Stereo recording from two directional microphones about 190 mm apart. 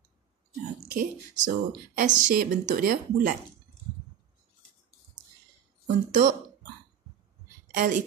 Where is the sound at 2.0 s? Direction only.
45° right (ahead or behind).